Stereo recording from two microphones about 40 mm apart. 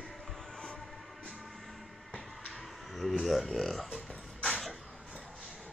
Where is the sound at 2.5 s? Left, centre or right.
Centre.